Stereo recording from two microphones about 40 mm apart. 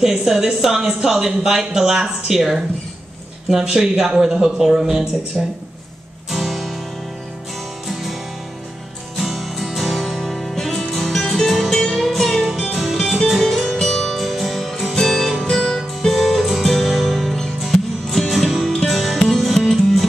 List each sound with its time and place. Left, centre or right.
0.2 s speech: centre
6.3 s music: centre
7.9 s music: centre
9.2 s music: centre